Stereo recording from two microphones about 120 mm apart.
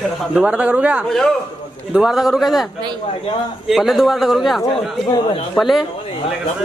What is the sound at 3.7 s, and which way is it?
A man's voice, centre (ahead or behind).